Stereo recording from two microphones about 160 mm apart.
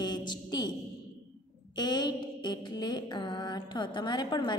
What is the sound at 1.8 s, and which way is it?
Mantra, 25° left (ahead or behind).